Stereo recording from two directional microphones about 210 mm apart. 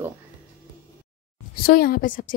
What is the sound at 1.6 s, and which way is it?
Speech, 45° left (ahead or behind).